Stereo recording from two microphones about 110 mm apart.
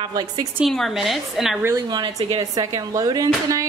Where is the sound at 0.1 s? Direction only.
35° right (ahead or behind).